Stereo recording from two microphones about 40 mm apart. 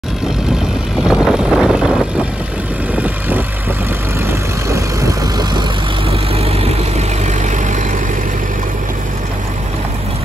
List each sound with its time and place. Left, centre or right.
1.0 s vehicle: right
3.0 s vehicle: right